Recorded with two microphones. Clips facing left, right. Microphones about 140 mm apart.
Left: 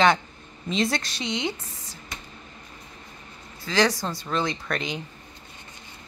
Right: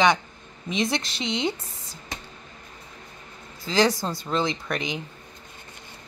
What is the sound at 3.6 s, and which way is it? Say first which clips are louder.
Speech: right 1 dB; 25° right (ahead or behind).